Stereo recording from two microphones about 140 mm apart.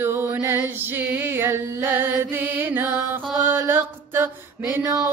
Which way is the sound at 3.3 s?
15° right (ahead or behind).